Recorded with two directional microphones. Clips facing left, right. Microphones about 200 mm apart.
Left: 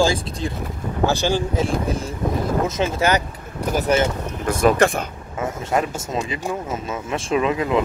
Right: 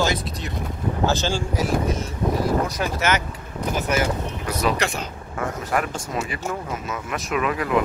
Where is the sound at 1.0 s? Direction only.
15° left (ahead or behind).